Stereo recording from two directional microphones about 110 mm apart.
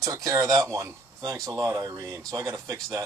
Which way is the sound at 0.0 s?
30° right (ahead or behind).